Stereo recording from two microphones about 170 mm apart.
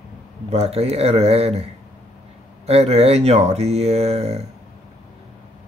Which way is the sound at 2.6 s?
35° right (ahead or behind).